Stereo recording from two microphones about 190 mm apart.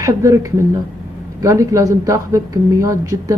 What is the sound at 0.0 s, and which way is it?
Speech, 15° right (ahead or behind).